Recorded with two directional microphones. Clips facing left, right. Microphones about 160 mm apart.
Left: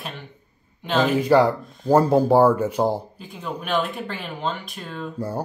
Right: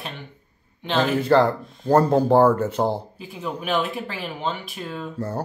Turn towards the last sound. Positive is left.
turn(degrees=-5)  # may be behind; listen again after turning